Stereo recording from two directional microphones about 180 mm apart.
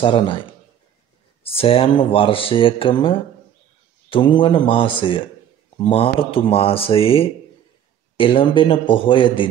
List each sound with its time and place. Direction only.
0.0 s speech: 30° left (ahead or behind)